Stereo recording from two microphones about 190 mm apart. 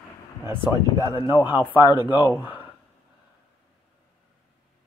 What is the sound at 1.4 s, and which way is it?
Speech, 20° left (ahead or behind).